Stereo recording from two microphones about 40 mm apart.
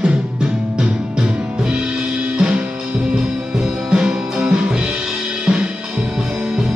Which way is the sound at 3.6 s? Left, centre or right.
Centre.